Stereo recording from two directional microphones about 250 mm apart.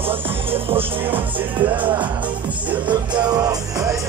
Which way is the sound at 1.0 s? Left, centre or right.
Centre.